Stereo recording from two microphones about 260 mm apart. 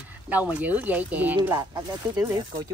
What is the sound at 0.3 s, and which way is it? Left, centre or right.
Speech, centre.